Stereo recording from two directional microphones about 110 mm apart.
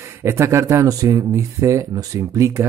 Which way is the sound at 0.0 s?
25° right (ahead or behind).